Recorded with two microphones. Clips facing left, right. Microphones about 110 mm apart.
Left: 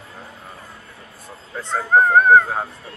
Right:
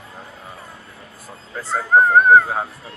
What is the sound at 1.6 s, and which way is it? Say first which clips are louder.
Speech: right 1 dB; 5° right (ahead or behind).